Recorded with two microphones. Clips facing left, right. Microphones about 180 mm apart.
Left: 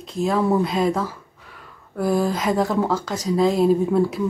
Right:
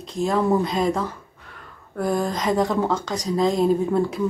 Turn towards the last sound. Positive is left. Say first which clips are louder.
# left 2 dB
turn(degrees=5)  # may be behind; listen again after turning